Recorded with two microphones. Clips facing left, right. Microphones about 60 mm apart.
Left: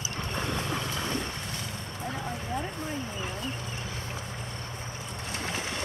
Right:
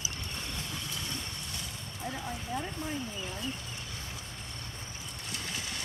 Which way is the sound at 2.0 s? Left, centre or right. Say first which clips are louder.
Left 2 dB; left.